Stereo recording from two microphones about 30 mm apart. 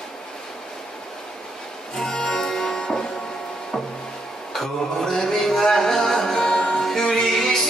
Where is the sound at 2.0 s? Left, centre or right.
Centre.